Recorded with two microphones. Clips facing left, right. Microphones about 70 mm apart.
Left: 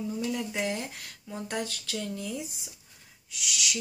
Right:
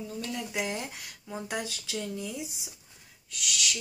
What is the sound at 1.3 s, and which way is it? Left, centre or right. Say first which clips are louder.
Speech: left 1 dB; centre.